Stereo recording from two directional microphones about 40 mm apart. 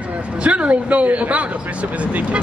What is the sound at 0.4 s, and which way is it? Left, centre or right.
A man's voice, right.